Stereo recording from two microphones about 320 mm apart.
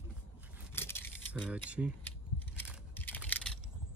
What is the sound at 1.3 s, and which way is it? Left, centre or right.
Mechanisms, centre.